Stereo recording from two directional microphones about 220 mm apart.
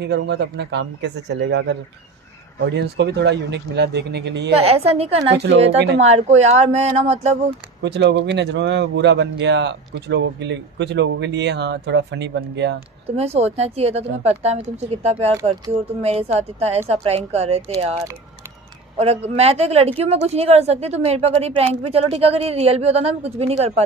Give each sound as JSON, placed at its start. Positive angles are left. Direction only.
{"t": 0.0, "sound": "speech", "side_deg": -50}
{"t": 4.6, "sound": "speech", "side_deg": -25}
{"t": 5.3, "sound": "speech", "side_deg": -50}
{"t": 5.9, "sound": "speech", "side_deg": -30}
{"t": 7.8, "sound": "speech", "side_deg": -50}
{"t": 13.1, "sound": "speech", "side_deg": -30}
{"t": 18.9, "sound": "speech", "side_deg": -30}